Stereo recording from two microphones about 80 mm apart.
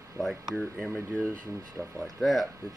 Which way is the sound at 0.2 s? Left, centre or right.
Centre.